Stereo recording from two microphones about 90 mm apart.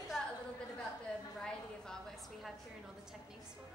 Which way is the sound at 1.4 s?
5° left (ahead or behind).